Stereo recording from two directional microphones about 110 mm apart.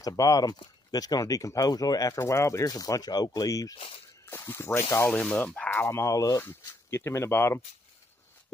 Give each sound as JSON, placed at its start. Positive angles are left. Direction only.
{"t": 0.0, "sound": "speech", "side_deg": 30}
{"t": 3.7, "sound": "speech", "side_deg": 55}
{"t": 4.3, "sound": "speech", "side_deg": 20}
{"t": 6.4, "sound": "speech", "side_deg": 15}